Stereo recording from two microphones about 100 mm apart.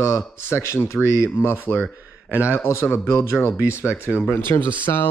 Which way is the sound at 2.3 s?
15° right (ahead or behind).